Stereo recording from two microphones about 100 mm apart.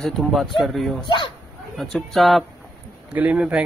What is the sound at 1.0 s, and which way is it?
Speech, 50° left (ahead or behind).